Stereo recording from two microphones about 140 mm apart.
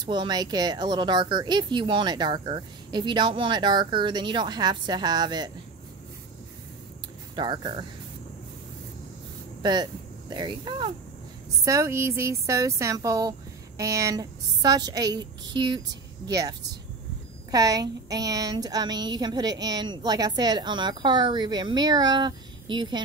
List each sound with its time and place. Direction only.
0.0 s speech: 30° right (ahead or behind)
7.3 s speech: 35° right (ahead or behind)
9.6 s speech: 30° right (ahead or behind)
11.6 s speech: 20° right (ahead or behind)